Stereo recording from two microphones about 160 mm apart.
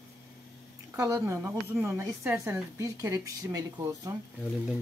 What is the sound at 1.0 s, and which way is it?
A woman's voice, 20° right (ahead or behind).